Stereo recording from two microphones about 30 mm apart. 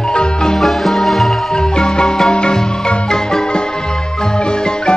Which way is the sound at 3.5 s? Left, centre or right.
Left.